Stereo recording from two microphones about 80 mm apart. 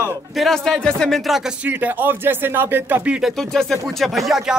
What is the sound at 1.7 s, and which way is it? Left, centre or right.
Speech, right.